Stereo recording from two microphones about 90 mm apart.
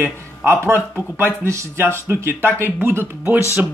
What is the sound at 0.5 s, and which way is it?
Speech, 30° right (ahead or behind).